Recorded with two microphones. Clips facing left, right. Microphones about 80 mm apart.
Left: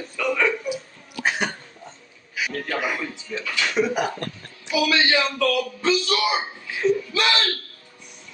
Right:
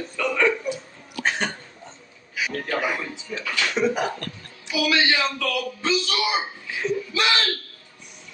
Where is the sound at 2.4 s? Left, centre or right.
Centre.